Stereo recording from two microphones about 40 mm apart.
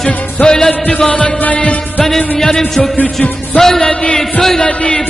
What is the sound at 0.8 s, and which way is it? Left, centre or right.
Music, left.